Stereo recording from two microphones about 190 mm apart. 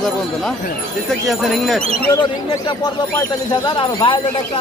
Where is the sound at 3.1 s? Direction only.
25° left (ahead or behind).